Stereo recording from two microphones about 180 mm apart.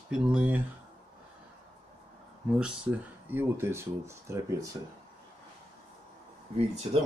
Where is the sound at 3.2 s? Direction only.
10° right (ahead or behind).